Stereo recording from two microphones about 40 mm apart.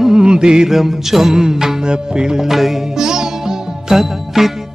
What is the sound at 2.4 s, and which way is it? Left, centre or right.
Music, centre.